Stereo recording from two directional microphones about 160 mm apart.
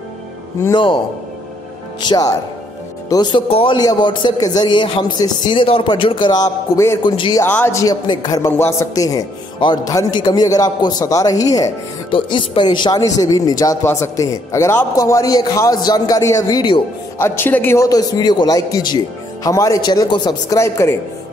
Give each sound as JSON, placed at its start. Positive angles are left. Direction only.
{"t": 0.7, "sound": "a man's voice", "side_deg": 30}
{"t": 7.4, "sound": "a man's voice", "side_deg": 15}
{"t": 17.2, "sound": "a man's voice", "side_deg": 15}